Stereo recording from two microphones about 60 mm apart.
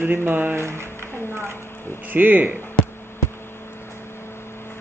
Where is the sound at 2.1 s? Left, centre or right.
Right.